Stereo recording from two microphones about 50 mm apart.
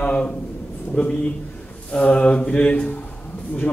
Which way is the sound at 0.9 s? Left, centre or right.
Left.